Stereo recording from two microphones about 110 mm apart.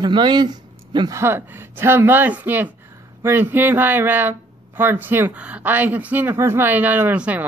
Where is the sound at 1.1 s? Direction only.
20° right (ahead or behind).